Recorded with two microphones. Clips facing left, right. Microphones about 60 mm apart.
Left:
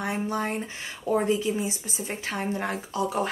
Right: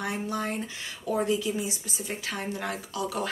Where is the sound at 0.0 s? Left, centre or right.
Left.